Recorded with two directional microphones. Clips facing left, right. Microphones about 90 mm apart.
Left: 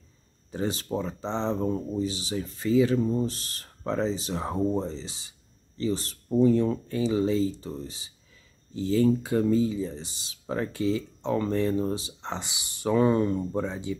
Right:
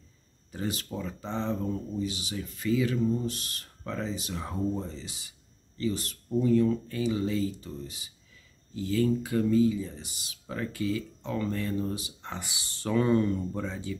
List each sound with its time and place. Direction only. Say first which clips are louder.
0.5 s speech: left 5 dB; 30° left (ahead or behind)